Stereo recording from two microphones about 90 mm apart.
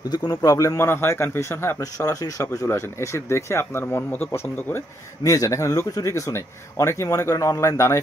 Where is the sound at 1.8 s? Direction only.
40° left (ahead or behind).